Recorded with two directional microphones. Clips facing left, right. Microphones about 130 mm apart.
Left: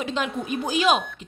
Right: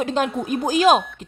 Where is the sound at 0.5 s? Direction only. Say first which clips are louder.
Right 5 dB; 45° right (ahead or behind).